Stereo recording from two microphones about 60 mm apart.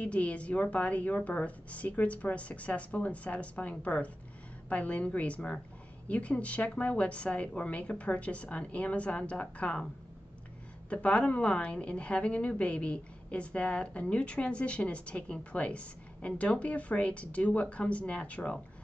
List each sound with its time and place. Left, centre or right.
0.0 s a woman's voice: left
10.9 s a woman's voice: centre